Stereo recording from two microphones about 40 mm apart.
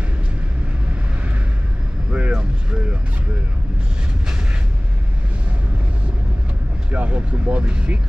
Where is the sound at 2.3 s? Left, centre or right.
Right.